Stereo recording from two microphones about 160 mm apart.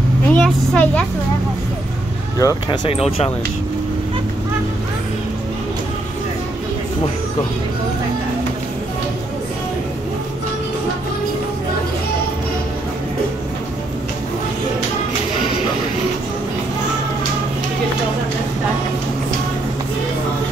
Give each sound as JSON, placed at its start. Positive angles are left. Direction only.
{"t": 0.3, "sound": "vehicle", "side_deg": 10}
{"t": 2.3, "sound": "speech", "side_deg": 25}
{"t": 2.9, "sound": "speech", "side_deg": 40}